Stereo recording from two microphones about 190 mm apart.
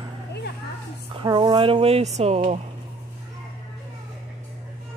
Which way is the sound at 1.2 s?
20° right (ahead or behind).